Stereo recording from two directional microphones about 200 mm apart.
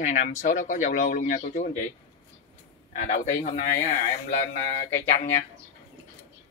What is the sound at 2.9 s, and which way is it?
Speech, 40° left (ahead or behind).